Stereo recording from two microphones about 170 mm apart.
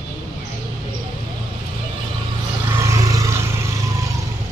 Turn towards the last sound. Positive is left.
turn(degrees=-20)  # may be behind; listen again after turning